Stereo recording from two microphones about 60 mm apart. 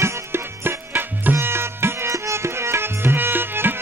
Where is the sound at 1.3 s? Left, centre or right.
Right.